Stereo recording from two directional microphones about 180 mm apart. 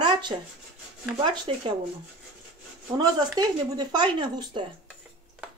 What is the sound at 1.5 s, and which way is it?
Speech, 30° right (ahead or behind).